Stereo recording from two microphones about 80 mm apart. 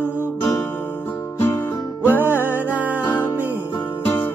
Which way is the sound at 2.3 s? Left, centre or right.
Right.